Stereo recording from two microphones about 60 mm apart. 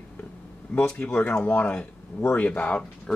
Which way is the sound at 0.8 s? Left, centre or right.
Left.